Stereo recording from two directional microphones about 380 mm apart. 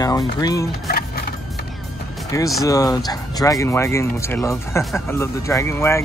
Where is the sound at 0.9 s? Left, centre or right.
Left.